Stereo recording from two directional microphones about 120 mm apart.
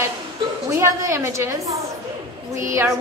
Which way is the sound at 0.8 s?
25° right (ahead or behind).